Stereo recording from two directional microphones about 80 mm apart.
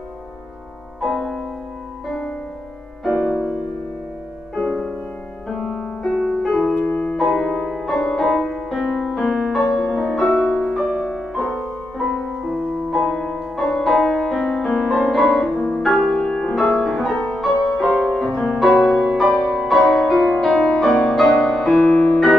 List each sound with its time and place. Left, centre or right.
1.0 s music: centre
3.1 s music: centre
4.6 s music: centre
6.7 s music: centre
7.2 s music: centre
13.0 s music: centre